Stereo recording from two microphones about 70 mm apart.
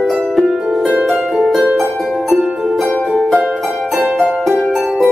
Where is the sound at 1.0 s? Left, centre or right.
Centre.